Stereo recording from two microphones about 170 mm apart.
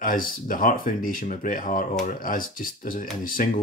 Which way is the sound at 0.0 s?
55° left (ahead or behind).